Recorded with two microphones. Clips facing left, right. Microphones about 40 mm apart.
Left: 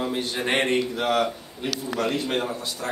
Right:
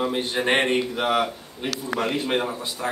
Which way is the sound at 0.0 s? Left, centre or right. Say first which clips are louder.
Right 3 dB; right.